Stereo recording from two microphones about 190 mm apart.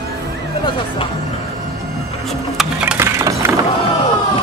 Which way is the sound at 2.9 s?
15° right (ahead or behind).